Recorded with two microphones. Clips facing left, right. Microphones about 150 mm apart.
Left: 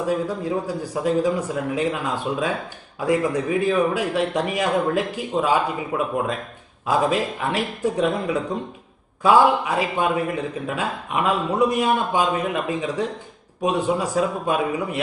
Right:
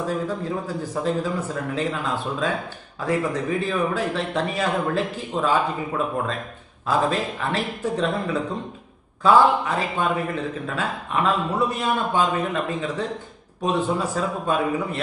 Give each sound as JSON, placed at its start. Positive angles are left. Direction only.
{"t": 0.0, "sound": "a man's voice", "side_deg": 10}